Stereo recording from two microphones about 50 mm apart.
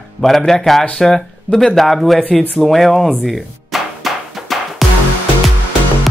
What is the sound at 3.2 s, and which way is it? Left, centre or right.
Music, centre.